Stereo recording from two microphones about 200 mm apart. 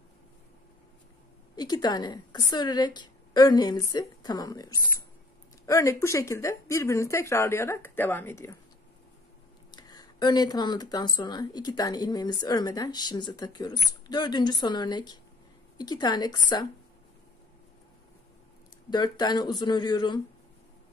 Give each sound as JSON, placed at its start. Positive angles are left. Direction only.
{"t": 1.6, "sound": "speech", "side_deg": 20}
{"t": 9.7, "sound": "speech", "side_deg": 20}
{"t": 18.9, "sound": "speech", "side_deg": 20}